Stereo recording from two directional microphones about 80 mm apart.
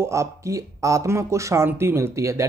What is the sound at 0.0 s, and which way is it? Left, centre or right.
Speech, right.